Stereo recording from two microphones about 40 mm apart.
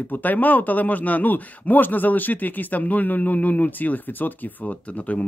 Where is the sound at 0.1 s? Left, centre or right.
Left.